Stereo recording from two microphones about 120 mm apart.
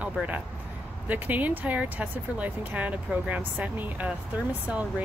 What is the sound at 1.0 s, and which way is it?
Speech, 15° right (ahead or behind).